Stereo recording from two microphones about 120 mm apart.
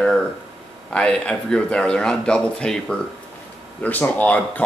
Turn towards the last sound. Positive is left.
turn(degrees=15)  # may be behind; listen again after turning